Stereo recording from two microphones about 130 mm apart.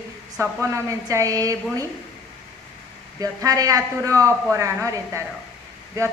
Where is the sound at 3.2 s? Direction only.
25° right (ahead or behind).